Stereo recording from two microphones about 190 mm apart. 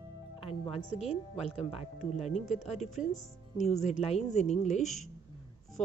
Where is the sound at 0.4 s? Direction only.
30° left (ahead or behind).